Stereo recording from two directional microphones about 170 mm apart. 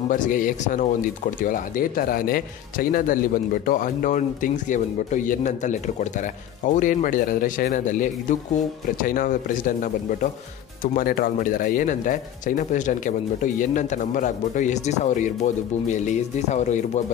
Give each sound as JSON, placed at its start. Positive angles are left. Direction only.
{"t": 0.1, "sound": "speech", "side_deg": 50}